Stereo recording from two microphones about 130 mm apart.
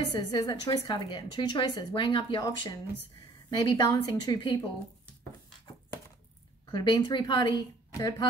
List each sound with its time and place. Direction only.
0.2 s a woman's voice: 35° left (ahead or behind)
6.6 s a woman's voice: 35° left (ahead or behind)